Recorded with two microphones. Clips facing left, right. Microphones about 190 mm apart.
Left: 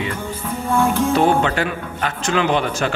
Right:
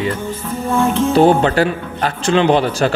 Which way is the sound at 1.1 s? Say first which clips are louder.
Right 8 dB; 35° right (ahead or behind).